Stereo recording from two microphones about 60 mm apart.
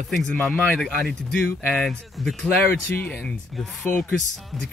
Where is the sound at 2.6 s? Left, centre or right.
Left.